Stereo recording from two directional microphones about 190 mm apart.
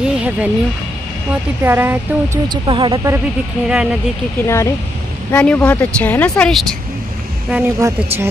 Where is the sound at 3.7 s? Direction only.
5° right (ahead or behind).